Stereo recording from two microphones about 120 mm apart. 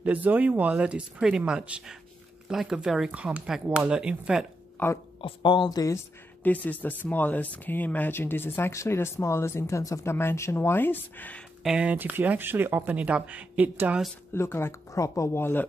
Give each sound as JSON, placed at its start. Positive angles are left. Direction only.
{"t": 0.0, "sound": "speech", "side_deg": -15}
{"t": 4.8, "sound": "speech", "side_deg": 15}
{"t": 5.2, "sound": "speech", "side_deg": 40}
{"t": 6.4, "sound": "speech", "side_deg": 15}
{"t": 11.6, "sound": "speech", "side_deg": -5}
{"t": 14.3, "sound": "speech", "side_deg": 20}